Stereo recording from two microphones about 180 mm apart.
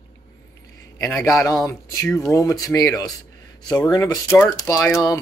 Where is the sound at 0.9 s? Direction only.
10° left (ahead or behind).